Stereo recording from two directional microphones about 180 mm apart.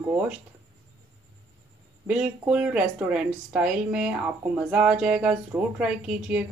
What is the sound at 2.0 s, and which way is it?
Speech, 5° right (ahead or behind).